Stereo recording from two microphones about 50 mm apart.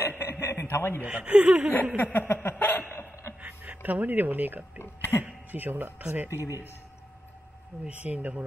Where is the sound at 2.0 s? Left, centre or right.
Left.